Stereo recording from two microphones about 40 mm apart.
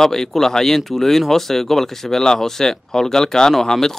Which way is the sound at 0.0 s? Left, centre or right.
Centre.